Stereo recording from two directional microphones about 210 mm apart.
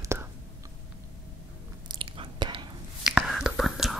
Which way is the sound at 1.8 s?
25° right (ahead or behind).